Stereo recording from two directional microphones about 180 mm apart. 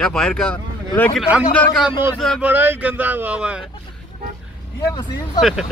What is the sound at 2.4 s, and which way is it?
Speech, 10° right (ahead or behind).